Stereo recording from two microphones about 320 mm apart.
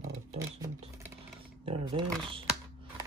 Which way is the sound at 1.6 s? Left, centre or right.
Centre.